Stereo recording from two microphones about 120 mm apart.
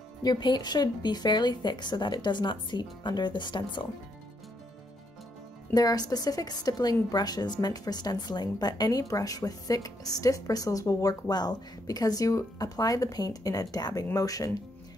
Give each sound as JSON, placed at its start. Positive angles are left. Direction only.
{"t": 0.2, "sound": "a woman's voice", "side_deg": 35}
{"t": 5.7, "sound": "a woman's voice", "side_deg": 30}